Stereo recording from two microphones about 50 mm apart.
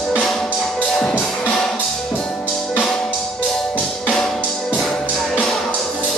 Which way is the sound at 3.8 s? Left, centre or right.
Centre.